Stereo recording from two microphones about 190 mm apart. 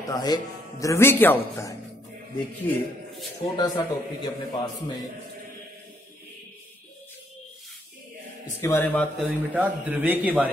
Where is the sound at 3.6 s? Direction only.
20° left (ahead or behind).